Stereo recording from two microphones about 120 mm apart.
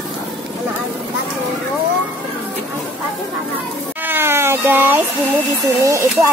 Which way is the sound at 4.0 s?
20° right (ahead or behind).